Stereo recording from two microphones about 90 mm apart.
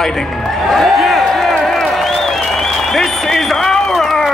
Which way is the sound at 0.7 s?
Centre (ahead or behind).